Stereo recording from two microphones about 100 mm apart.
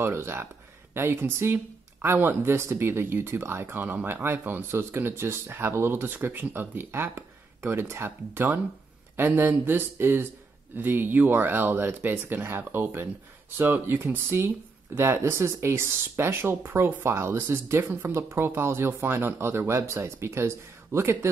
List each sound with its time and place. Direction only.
0.0 s speech: 25° right (ahead or behind)